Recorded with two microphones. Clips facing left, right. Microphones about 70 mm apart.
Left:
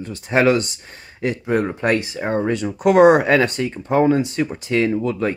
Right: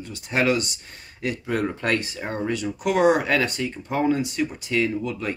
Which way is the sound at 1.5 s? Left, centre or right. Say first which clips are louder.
Left 5 dB; left.